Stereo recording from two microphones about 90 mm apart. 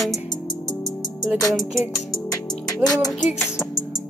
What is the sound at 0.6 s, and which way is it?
Music, 45° left (ahead or behind).